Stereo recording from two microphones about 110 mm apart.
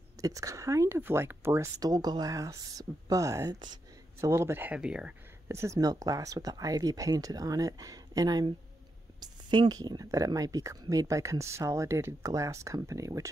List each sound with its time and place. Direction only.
0.2 s speech: 30° right (ahead or behind)
1.8 s speech: 35° right (ahead or behind)
4.7 s speech: 10° right (ahead or behind)
5.5 s speech: 25° right (ahead or behind)